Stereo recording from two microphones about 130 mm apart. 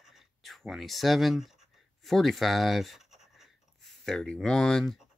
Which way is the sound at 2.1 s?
Centre (ahead or behind).